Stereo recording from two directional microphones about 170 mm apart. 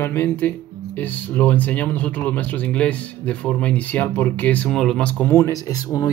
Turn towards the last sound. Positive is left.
turn(degrees=20)  # may be behind; listen again after turning